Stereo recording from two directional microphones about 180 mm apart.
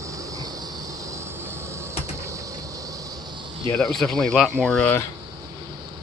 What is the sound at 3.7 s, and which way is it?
Speech, centre (ahead or behind).